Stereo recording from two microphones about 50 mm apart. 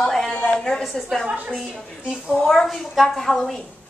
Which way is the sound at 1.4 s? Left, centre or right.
Centre.